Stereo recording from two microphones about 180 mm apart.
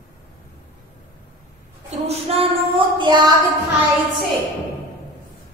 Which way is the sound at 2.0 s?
35° right (ahead or behind).